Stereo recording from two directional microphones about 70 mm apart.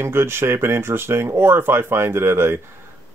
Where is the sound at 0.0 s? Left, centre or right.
Right.